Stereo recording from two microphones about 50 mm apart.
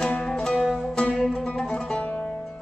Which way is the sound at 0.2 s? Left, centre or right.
Centre.